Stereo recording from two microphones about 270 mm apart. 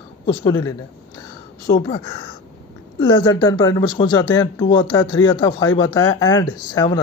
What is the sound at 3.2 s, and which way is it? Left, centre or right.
Speech, centre.